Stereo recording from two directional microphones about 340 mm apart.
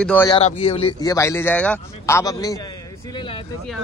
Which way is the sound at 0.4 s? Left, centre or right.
Centre.